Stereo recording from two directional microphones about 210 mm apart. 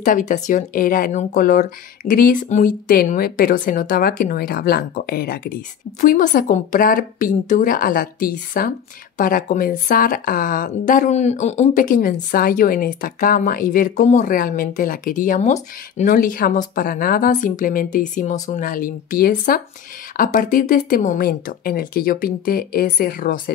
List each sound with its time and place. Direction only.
0.0 s speech: 35° left (ahead or behind)